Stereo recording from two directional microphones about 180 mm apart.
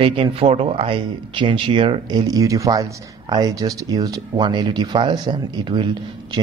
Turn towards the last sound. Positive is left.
turn(degrees=-25)  # may be behind; listen again after turning